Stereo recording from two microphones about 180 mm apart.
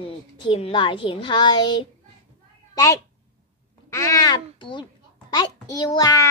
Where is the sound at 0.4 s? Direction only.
30° left (ahead or behind).